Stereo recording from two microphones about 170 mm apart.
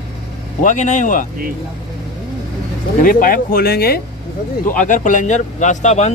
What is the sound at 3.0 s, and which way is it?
A man's voice, 55° left (ahead or behind).